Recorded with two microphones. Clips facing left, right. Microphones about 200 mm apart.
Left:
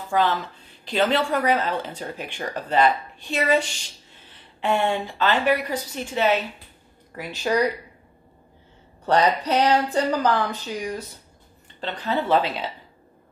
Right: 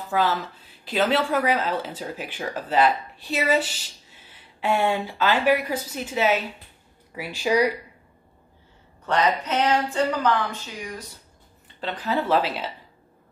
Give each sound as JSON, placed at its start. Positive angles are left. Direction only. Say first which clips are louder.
{"t": 0.1, "sound": "speech", "louder": "left 1 dB", "side_deg": -5}
{"t": 9.0, "sound": "speech", "louder": "left 3 dB", "side_deg": 35}
{"t": 11.8, "sound": "speech", "louder": "even", "side_deg": -5}